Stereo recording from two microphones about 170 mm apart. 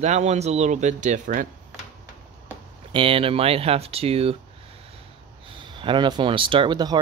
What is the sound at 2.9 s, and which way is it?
Speech, 30° right (ahead or behind).